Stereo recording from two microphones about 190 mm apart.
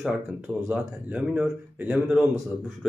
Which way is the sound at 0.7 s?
5° right (ahead or behind).